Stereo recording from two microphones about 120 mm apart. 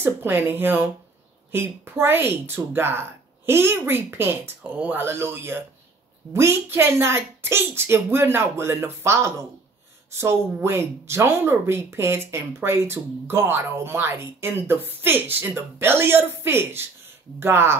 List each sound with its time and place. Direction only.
0.0 s speech: 15° right (ahead or behind)